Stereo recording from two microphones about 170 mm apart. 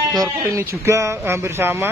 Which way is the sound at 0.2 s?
15° right (ahead or behind).